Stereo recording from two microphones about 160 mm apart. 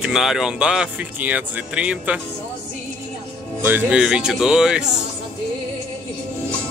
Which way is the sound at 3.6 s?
10° right (ahead or behind).